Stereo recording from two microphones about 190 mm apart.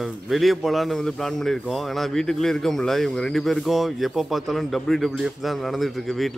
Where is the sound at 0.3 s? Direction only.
Centre (ahead or behind).